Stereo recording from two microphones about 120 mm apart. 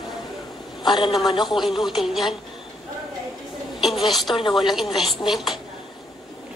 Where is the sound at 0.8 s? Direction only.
40° left (ahead or behind).